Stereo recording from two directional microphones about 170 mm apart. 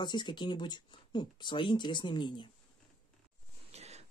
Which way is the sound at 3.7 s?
40° right (ahead or behind).